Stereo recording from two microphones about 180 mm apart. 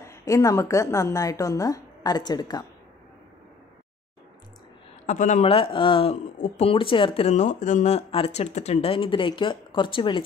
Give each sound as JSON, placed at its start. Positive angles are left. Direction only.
{"t": 0.0, "sound": "a woman's voice", "side_deg": 15}
{"t": 5.0, "sound": "speech", "side_deg": 45}